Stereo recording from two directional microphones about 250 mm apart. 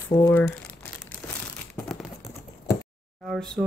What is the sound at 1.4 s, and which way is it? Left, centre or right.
Crumpling, centre.